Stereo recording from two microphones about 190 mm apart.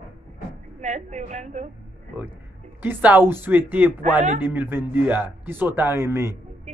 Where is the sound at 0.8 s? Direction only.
40° right (ahead or behind).